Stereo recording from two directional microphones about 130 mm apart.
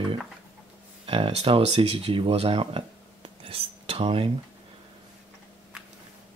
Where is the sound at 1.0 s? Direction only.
45° right (ahead or behind).